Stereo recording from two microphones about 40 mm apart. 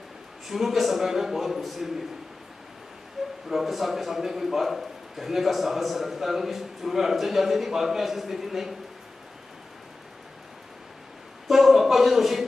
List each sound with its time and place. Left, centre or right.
0.5 s a man's voice: centre
3.4 s a man's voice: centre
11.4 s a sound: centre